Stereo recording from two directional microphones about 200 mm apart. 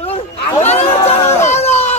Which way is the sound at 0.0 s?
30° left (ahead or behind).